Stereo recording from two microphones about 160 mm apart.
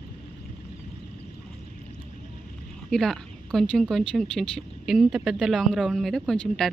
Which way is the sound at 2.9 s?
5° left (ahead or behind).